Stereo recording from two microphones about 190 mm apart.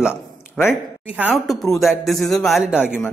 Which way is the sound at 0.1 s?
10° left (ahead or behind).